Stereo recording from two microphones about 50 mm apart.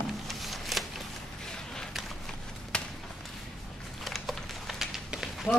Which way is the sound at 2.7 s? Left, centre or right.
Centre.